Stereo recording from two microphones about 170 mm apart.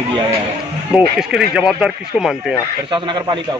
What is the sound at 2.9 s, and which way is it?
Speech, 25° right (ahead or behind).